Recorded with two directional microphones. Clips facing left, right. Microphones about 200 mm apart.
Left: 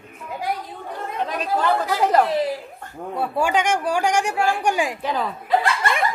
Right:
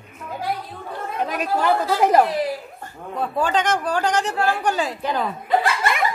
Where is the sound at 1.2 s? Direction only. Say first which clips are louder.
Right 1 dB; 10° right (ahead or behind).